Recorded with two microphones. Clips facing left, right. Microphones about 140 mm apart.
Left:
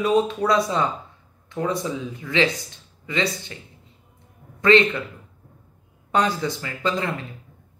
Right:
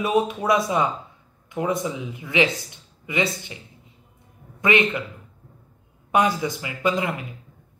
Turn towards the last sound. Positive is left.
turn(degrees=-20)  # may be behind; listen again after turning